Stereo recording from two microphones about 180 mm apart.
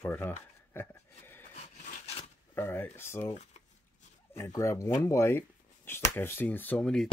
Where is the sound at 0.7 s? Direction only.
15° left (ahead or behind).